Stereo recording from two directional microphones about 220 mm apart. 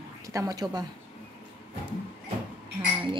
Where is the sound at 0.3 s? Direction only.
15° right (ahead or behind).